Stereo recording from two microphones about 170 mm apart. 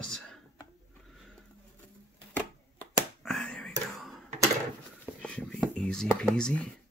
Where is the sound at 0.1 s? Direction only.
5° left (ahead or behind).